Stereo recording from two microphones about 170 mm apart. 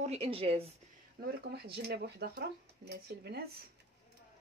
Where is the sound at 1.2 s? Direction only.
75° right (ahead or behind).